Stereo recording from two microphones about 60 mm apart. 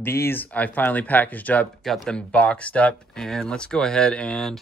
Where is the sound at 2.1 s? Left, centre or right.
Centre.